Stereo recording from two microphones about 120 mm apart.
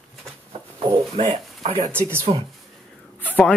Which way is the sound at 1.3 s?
60° right (ahead or behind).